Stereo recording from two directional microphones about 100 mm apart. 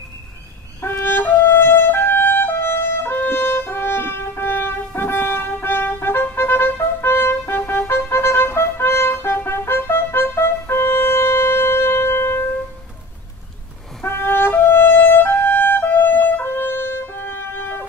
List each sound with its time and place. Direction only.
0.7 s music: 25° left (ahead or behind)
14.0 s music: 25° left (ahead or behind)